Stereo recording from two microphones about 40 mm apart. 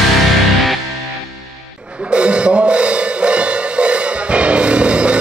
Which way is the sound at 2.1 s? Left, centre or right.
Right.